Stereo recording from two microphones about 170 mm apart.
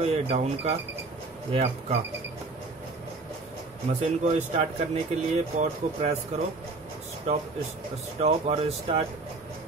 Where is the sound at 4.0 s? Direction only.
40° right (ahead or behind).